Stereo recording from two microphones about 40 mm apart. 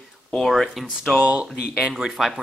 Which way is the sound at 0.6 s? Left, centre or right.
Centre.